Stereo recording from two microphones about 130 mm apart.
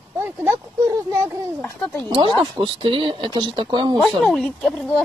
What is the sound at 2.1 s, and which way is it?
Speech, 40° right (ahead or behind).